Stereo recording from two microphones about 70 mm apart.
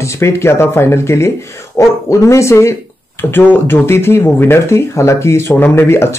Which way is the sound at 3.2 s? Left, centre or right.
Left.